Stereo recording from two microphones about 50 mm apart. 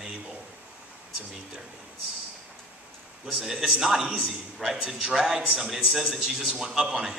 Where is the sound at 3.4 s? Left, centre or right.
Centre.